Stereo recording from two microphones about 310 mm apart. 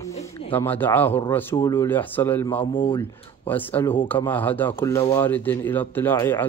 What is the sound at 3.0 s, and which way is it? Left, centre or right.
Speech, centre.